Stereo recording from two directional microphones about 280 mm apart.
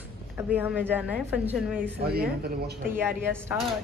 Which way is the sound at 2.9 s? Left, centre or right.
Centre.